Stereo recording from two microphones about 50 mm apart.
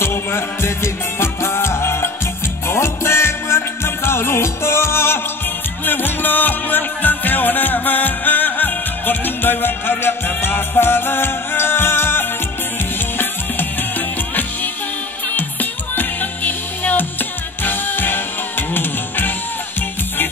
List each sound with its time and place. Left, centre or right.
0.0 s music: left
5.9 s music: left
13.2 s music: left